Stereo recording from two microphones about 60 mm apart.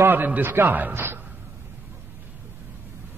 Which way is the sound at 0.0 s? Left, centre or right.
Right.